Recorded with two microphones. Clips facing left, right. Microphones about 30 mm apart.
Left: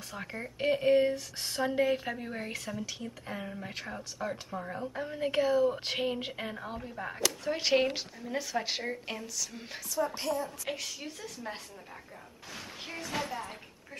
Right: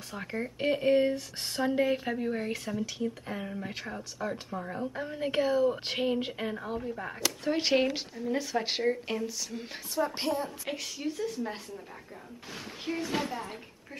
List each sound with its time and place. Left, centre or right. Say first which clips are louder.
0.1 s speech: right 5 dB; centre
9.9 s a woman's voice: right 2 dB; right
10.7 s speech: right 3 dB; centre